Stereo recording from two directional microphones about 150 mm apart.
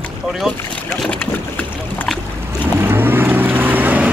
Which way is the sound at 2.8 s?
15° right (ahead or behind).